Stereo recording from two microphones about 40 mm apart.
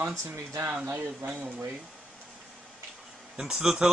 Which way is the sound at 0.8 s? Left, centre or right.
Right.